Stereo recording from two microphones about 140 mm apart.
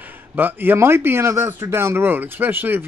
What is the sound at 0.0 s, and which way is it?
A man's voice, 15° right (ahead or behind).